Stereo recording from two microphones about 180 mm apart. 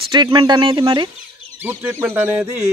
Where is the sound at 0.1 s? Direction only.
25° right (ahead or behind).